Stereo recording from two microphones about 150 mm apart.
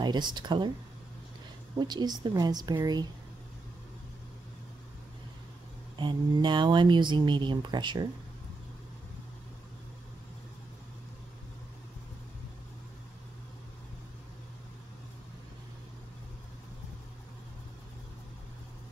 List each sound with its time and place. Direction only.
0.0 s a woman's voice: 30° right (ahead or behind)
1.8 s a woman's voice: 30° right (ahead or behind)
5.9 s speech: 30° right (ahead or behind)